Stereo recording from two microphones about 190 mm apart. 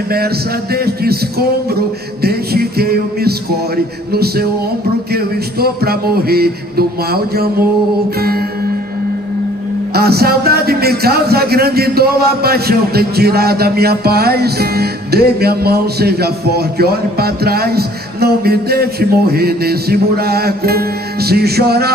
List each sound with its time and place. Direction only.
0.7 s a man's voice: 55° right (ahead or behind)
2.2 s a man's voice: 55° right (ahead or behind)
5.1 s a sound: 55° right (ahead or behind)
8.2 s a man's voice: 55° right (ahead or behind)
9.9 s a man's voice: 55° right (ahead or behind)